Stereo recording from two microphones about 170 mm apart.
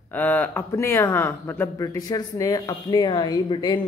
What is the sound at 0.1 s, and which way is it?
A man's voice, 10° left (ahead or behind).